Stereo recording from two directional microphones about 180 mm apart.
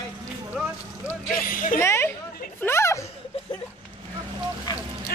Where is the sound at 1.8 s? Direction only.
15° left (ahead or behind).